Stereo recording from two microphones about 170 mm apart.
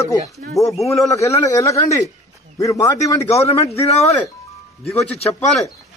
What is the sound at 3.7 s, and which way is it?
Speech, 40° left (ahead or behind).